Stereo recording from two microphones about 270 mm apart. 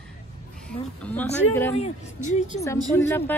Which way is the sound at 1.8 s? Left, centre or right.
Left.